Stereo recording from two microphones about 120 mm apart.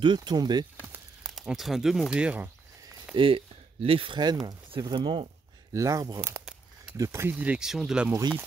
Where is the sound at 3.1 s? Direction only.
45° right (ahead or behind).